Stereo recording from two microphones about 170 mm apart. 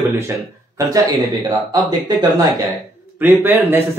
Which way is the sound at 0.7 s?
20° right (ahead or behind).